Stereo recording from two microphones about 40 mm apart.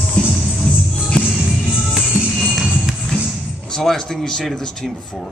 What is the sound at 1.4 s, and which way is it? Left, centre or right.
Music, centre.